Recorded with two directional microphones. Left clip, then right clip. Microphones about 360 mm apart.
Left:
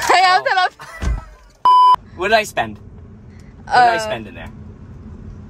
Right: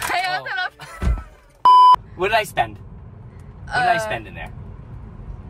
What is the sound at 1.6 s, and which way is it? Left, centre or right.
Beep, centre.